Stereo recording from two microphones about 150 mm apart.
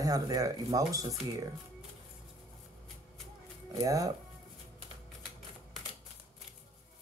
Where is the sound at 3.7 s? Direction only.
25° right (ahead or behind).